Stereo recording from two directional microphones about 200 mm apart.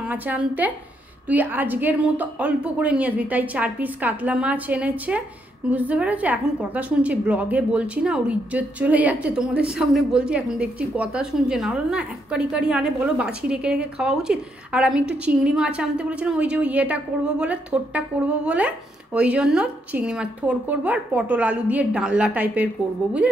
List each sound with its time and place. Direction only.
0.0 s a woman's voice: 10° right (ahead or behind)